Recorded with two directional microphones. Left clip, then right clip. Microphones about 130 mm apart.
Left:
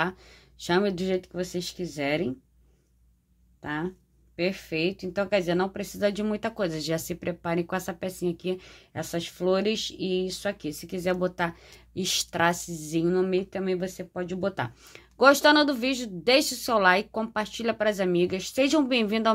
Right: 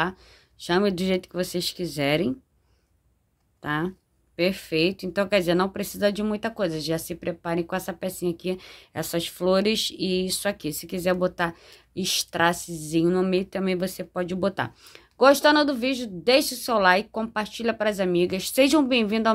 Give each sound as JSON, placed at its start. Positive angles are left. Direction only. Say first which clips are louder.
{"t": 0.0, "sound": "speech", "louder": "right 2 dB", "side_deg": -15}
{"t": 0.8, "sound": "speech", "louder": "right 3 dB", "side_deg": -40}
{"t": 3.6, "sound": "speech", "louder": "right 4 dB", "side_deg": -35}
{"t": 13.1, "sound": "speech", "louder": "right 2 dB", "side_deg": -40}
{"t": 14.5, "sound": "speech", "louder": "right 3 dB", "side_deg": -25}
{"t": 18.4, "sound": "speech", "louder": "right 4 dB", "side_deg": -35}
{"t": 18.9, "sound": "speech", "louder": "right 2 dB", "side_deg": -15}